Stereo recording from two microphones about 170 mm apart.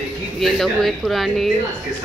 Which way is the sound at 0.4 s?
Centre (ahead or behind).